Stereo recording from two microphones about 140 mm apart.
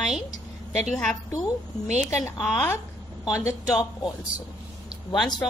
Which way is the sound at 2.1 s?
20° left (ahead or behind).